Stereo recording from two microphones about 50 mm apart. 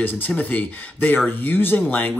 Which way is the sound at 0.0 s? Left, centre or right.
Left.